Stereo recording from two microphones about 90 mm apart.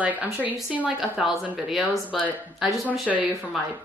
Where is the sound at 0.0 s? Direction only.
15° right (ahead or behind); by 3.2 s centre (ahead or behind).